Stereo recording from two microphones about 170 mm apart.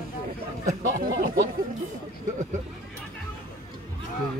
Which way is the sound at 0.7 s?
50° right (ahead or behind).